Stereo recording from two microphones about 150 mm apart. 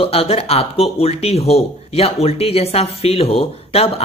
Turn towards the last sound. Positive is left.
turn(degrees=40)  # may be behind; listen again after turning